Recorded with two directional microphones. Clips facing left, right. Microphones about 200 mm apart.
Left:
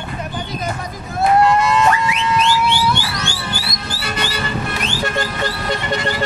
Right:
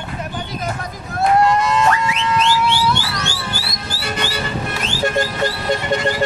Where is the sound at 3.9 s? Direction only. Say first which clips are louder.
Right 1 dB; 45° right (ahead or behind).